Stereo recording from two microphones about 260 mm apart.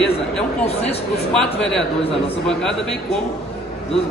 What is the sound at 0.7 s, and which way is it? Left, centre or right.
Speech, left.